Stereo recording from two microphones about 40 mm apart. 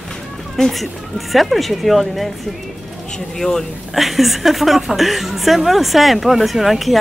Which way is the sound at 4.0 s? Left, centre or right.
Centre.